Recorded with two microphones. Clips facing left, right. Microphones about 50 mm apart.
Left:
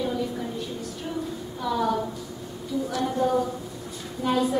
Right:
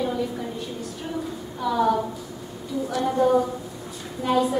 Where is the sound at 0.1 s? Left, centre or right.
Centre.